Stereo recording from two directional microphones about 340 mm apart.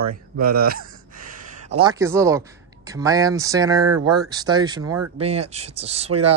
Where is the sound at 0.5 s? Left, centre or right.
Right.